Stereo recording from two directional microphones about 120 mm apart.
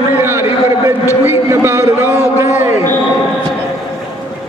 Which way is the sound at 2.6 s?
25° right (ahead or behind).